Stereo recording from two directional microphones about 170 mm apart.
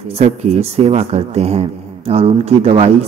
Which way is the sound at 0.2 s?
40° right (ahead or behind).